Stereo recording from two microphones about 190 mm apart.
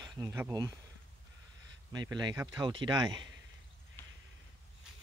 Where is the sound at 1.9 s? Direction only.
20° right (ahead or behind).